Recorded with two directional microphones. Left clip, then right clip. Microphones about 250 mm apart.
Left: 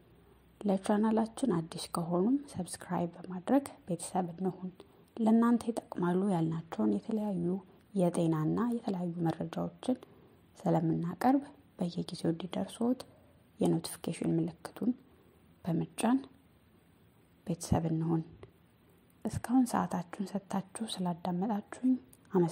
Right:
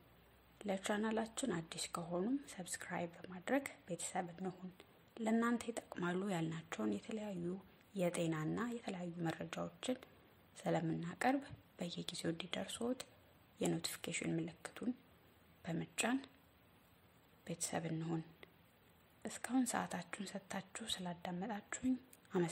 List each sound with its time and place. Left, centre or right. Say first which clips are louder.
0.6 s a woman's voice: left 9 dB; centre
4.7 s a sound: left 11 dB; centre
5.4 s a woman's voice: left 9 dB; centre
17.5 s a woman's voice: left 9 dB; centre